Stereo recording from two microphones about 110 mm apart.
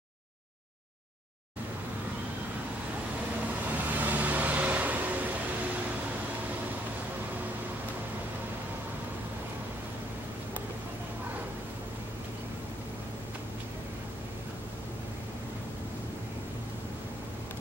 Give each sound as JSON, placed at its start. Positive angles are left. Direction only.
{"t": 3.6, "sound": "vehicle", "side_deg": -15}